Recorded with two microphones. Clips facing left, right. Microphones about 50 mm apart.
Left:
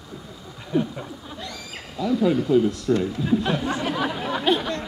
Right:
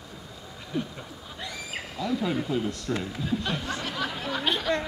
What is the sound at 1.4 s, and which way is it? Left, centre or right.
Owl, centre.